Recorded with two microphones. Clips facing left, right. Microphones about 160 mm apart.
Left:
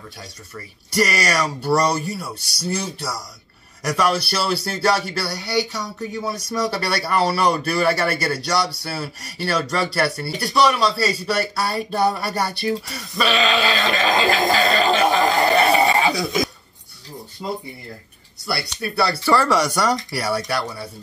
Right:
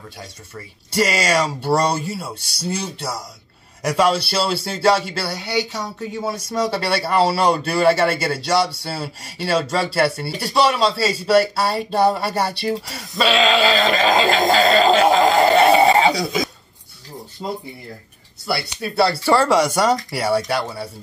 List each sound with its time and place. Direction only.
0.8 s speech: 25° right (ahead or behind)
17.4 s speech: 35° right (ahead or behind)
19.2 s speech: 25° right (ahead or behind)